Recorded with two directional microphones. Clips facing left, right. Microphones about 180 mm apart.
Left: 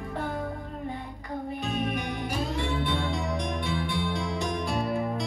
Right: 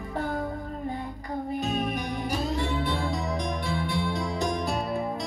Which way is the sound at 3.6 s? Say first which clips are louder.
Right 1 dB; 40° right (ahead or behind).